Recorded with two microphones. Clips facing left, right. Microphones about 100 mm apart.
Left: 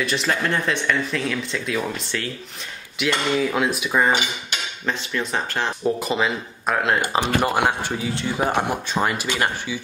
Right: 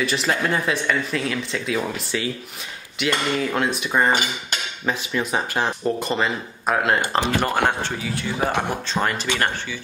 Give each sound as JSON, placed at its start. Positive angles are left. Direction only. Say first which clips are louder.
{"t": 0.0, "sound": "speech", "louder": "right 1 dB", "side_deg": 0}
{"t": 4.8, "sound": "speech", "louder": "right 2 dB", "side_deg": -10}
{"t": 5.9, "sound": "speech", "louder": "left 1 dB", "side_deg": 5}
{"t": 7.0, "sound": "speech", "louder": "left 1 dB", "side_deg": 10}
{"t": 8.1, "sound": "speech", "louder": "left 1 dB", "side_deg": 30}
{"t": 8.9, "sound": "speech", "louder": "even", "side_deg": 10}